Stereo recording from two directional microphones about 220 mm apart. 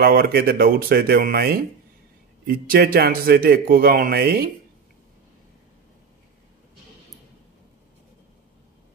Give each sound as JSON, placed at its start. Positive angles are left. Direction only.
{"t": 0.0, "sound": "a man's voice", "side_deg": -45}